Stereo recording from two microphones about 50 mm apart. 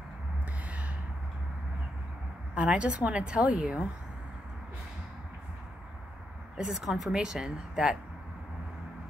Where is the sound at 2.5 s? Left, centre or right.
Right.